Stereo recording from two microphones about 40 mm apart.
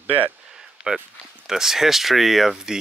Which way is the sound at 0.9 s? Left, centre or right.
Right.